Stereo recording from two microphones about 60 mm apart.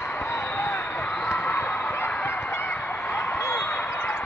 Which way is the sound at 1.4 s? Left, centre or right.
Left.